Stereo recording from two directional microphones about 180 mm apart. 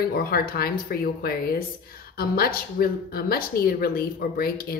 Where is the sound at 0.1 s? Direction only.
55° left (ahead or behind).